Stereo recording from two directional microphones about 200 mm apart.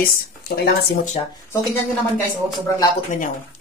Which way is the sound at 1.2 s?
25° left (ahead or behind).